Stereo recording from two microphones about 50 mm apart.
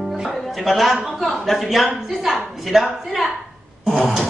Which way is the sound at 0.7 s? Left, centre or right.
Centre.